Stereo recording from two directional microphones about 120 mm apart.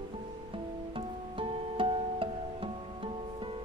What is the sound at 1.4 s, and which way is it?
Music, 45° right (ahead or behind).